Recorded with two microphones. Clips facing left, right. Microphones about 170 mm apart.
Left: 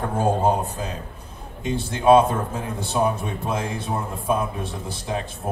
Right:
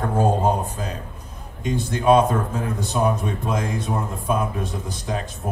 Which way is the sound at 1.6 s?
30° left (ahead or behind).